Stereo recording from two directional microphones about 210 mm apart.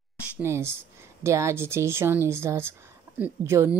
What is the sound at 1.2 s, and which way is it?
Speech, 10° right (ahead or behind).